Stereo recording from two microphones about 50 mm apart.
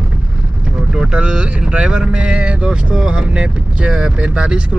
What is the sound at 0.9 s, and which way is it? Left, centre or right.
Speech, centre.